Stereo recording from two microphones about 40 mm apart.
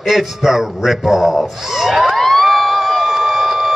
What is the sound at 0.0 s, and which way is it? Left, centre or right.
A man's voice, centre.